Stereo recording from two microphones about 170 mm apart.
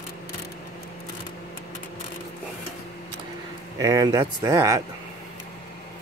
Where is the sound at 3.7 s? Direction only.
20° right (ahead or behind).